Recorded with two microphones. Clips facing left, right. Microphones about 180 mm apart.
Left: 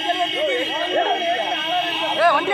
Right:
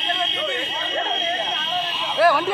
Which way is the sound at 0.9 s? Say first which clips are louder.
Left 6 dB; 55° left (ahead or behind).